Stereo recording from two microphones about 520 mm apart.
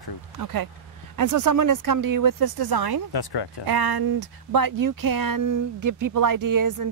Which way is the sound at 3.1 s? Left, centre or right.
Left.